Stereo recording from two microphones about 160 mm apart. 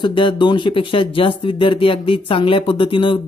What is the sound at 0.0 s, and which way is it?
Speech, 30° left (ahead or behind).